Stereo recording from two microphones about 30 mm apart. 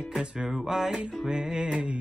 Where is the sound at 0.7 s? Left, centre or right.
Centre; by 2.0 s right.